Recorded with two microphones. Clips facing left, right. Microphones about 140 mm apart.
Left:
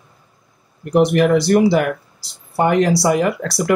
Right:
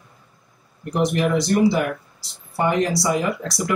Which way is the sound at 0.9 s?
65° left (ahead or behind).